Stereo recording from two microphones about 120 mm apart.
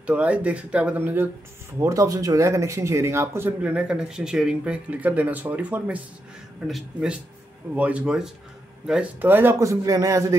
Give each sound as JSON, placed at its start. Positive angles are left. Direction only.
{"t": 0.0, "sound": "speech", "side_deg": -10}
{"t": 1.8, "sound": "a man's voice", "side_deg": -25}